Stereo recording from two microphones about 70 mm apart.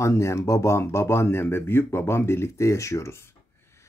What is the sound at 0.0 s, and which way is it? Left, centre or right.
Speech, left.